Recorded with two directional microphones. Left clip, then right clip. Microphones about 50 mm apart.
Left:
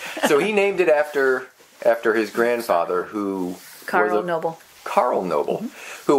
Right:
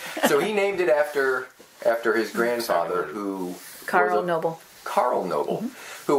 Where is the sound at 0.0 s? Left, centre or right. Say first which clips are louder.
Left 3 dB; centre.